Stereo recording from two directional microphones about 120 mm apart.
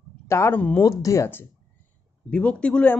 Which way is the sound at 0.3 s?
20° left (ahead or behind).